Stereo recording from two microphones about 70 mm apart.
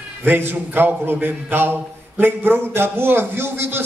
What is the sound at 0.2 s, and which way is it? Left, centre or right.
A man's voice, right.